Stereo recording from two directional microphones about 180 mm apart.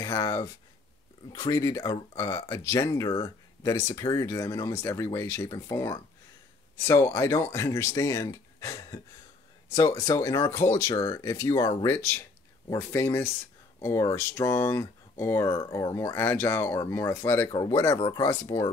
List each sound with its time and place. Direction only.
0.0 s speech: 20° left (ahead or behind)